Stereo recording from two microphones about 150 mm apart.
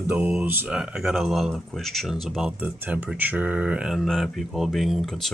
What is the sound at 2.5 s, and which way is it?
Speech, 10° right (ahead or behind).